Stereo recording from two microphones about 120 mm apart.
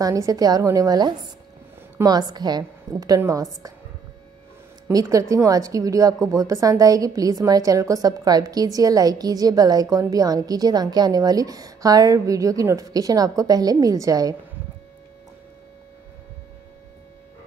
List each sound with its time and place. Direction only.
0.0 s a woman's voice: 30° right (ahead or behind)
4.9 s a woman's voice: 20° right (ahead or behind)